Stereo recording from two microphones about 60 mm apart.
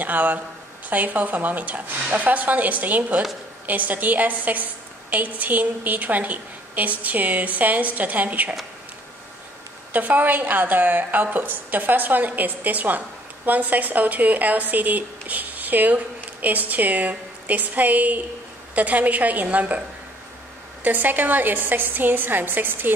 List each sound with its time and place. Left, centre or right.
0.0 s speech: right
9.9 s a woman's voice: right
20.8 s a woman's voice: right